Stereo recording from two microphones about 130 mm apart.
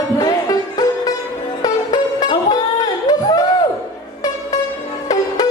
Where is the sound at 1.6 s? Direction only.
30° left (ahead or behind).